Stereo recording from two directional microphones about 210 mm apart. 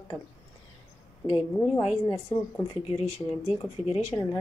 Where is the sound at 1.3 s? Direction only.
25° left (ahead or behind).